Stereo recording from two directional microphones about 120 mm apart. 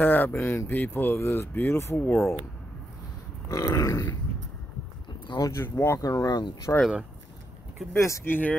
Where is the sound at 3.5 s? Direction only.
25° left (ahead or behind).